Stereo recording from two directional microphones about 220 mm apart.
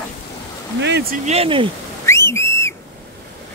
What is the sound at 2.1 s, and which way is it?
Whistle, 10° left (ahead or behind).